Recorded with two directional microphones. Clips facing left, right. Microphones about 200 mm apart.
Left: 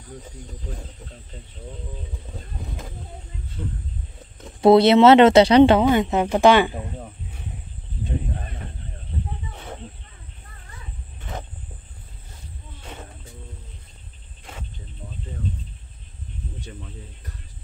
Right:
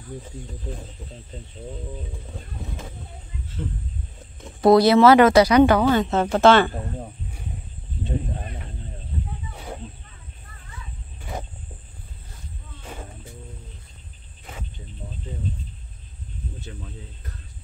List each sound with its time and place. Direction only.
2.6 s speech: centre (ahead or behind)
4.6 s speech: 25° left (ahead or behind)
16.6 s speech: 5° right (ahead or behind)